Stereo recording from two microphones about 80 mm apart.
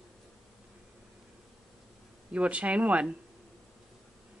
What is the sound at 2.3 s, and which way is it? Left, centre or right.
Speech, centre.